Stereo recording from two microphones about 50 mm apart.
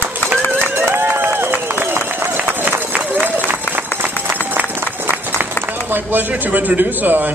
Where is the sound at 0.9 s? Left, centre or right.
Right.